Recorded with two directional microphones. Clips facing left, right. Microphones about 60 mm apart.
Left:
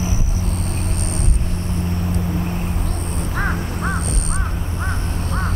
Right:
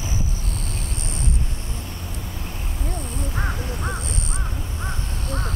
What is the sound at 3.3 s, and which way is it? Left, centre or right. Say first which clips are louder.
Crow: left 7 dB; left.